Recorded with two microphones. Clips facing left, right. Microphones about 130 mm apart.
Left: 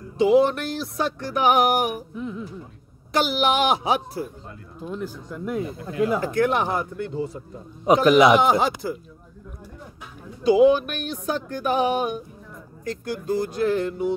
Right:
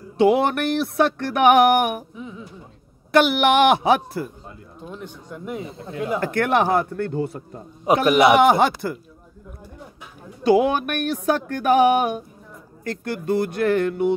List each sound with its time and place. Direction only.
0.2 s speech: 65° right (ahead or behind)
2.1 s speech: centre (ahead or behind)
3.1 s speech: 65° right (ahead or behind)
4.7 s speech: centre (ahead or behind)
6.2 s a sound: 65° right (ahead or behind)
7.9 s speech: 65° right (ahead or behind)
10.4 s a sound: 65° right (ahead or behind)
12.8 s speech: 60° right (ahead or behind)